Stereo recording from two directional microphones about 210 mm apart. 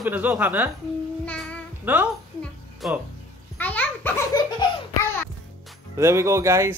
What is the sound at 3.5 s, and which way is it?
Children playing, 5° left (ahead or behind).